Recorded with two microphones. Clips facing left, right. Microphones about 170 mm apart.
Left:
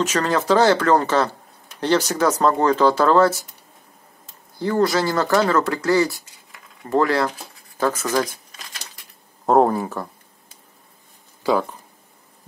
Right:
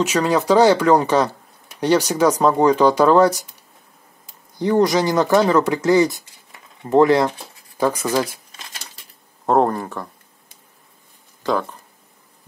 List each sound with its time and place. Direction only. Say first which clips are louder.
0.0 s speech: right 3 dB; 10° right (ahead or behind)
4.6 s speech: right 3 dB; 15° right (ahead or behind)
9.5 s speech: left 1 dB; 5° left (ahead or behind)
11.4 s speech: left 1 dB; 10° left (ahead or behind)